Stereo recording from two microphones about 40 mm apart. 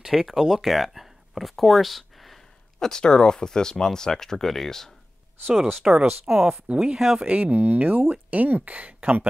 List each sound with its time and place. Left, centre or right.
0.1 s speech: centre
2.8 s speech: centre
5.5 s speech: centre
7.2 s speech: right